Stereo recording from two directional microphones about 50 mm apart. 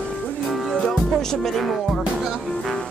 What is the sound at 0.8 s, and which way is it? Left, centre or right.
Music, centre.